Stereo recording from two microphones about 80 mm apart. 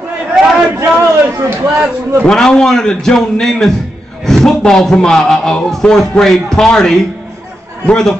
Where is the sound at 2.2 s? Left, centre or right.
Centre.